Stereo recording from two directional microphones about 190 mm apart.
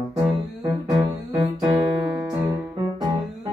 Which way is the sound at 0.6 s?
20° right (ahead or behind).